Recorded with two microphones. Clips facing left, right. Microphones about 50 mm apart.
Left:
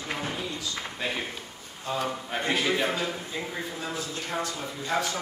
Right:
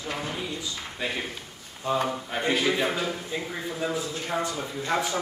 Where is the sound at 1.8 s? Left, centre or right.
Right.